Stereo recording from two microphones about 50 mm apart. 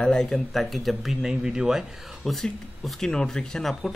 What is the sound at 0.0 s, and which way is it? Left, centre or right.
Speech, centre.